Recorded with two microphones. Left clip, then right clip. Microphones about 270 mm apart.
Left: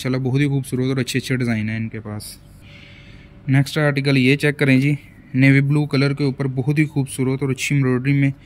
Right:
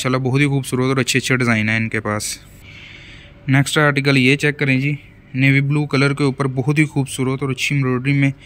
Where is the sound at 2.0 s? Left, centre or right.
Right.